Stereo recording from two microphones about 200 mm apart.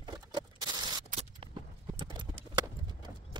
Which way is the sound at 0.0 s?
20° right (ahead or behind).